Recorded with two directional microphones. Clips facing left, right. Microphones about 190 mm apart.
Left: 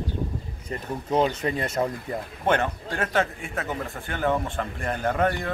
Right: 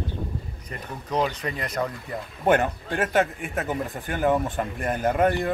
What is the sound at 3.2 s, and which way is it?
Speech, 15° right (ahead or behind).